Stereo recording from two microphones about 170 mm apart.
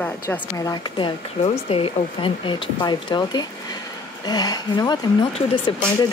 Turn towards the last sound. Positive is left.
turn(degrees=30)  # may be behind; listen again after turning